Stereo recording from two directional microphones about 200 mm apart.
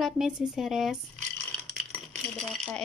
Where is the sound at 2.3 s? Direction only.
5° left (ahead or behind).